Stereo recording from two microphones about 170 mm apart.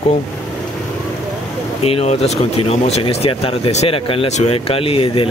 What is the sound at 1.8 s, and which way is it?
Speech, 35° left (ahead or behind).